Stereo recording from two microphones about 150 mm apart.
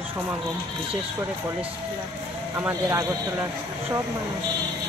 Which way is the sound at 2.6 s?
20° right (ahead or behind).